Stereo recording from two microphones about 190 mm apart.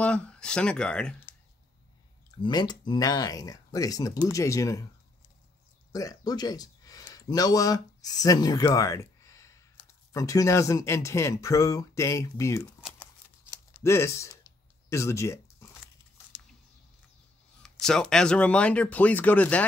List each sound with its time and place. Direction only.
0.0 s speech: 5° left (ahead or behind)
2.4 s speech: 20° left (ahead or behind)
5.9 s speech: 20° left (ahead or behind)
13.0 s crumpling: 15° left (ahead or behind)
14.9 s speech: 15° left (ahead or behind)
17.6 s speech: centre (ahead or behind)